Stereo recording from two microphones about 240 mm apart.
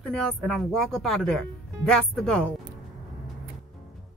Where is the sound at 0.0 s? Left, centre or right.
Centre.